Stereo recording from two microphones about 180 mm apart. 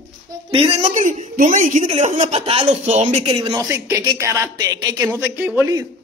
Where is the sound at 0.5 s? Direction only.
30° right (ahead or behind).